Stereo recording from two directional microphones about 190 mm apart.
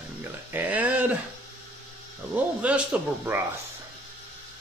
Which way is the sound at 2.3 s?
5° right (ahead or behind).